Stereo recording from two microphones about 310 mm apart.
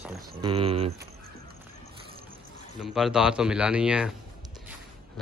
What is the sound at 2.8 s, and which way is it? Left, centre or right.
A man's voice, centre.